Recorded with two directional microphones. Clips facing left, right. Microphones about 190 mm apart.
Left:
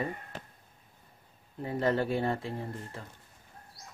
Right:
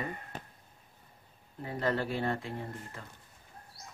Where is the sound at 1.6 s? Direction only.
25° left (ahead or behind).